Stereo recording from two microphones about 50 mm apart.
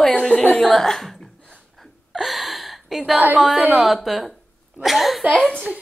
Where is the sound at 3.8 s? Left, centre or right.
Centre.